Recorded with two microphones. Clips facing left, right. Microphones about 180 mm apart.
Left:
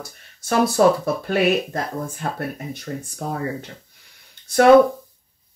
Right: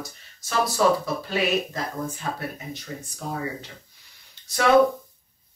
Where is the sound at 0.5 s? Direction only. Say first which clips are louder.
Left 5 dB; 55° left (ahead or behind).